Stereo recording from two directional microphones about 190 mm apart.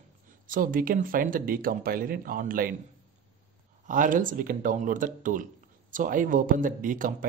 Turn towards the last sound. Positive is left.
turn(degrees=-45)  # may be behind; listen again after turning